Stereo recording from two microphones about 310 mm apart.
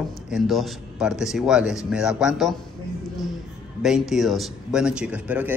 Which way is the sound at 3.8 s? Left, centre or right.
Centre.